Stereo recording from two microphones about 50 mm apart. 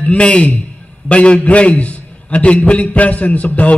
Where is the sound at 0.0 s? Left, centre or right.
Left.